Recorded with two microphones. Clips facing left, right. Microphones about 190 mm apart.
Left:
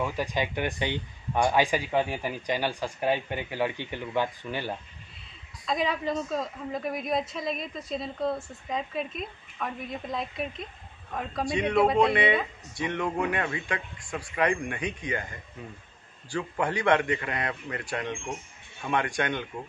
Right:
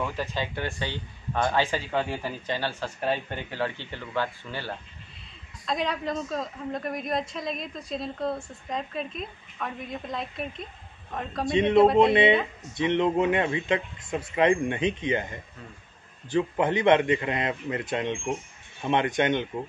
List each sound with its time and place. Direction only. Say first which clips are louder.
0.0 s speech: left 1 dB; 15° left (ahead or behind)
5.7 s speech: left 1 dB; centre (ahead or behind)
11.5 s speech: right 5 dB; 20° right (ahead or behind)